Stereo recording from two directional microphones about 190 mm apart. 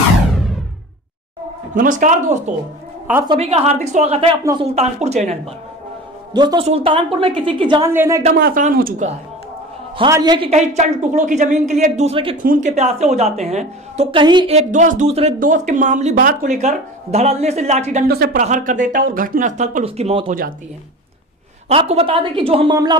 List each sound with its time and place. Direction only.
1.8 s speech: 45° right (ahead or behind)
6.3 s a woman's voice: 25° right (ahead or behind)
7.9 s speech: 10° right (ahead or behind)
8.4 s speech: 50° right (ahead or behind)
9.9 s a woman's voice: 20° right (ahead or behind)
10.5 s speech: 40° right (ahead or behind)
12.4 s speech: 40° right (ahead or behind)
18.0 s speech: 55° right (ahead or behind)
18.4 s speech: 40° right (ahead or behind)
21.6 s a woman's voice: 35° right (ahead or behind)